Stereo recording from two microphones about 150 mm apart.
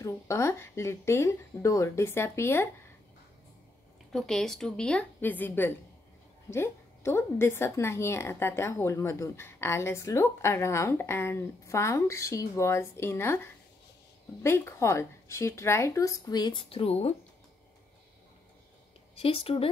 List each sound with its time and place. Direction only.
0.0 s a woman's voice: 20° left (ahead or behind)
4.1 s a woman's voice: 5° left (ahead or behind); by 17.1 s 40° left (ahead or behind)
19.1 s speech: 40° left (ahead or behind)